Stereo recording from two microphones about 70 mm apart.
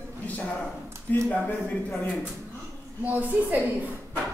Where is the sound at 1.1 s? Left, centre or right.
Left.